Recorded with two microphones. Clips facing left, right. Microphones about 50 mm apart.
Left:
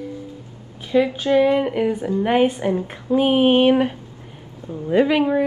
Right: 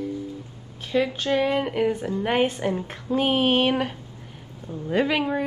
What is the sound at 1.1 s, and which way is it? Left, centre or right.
Speech, centre.